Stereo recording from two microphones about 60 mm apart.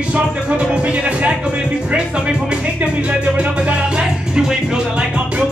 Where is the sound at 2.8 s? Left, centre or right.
Right.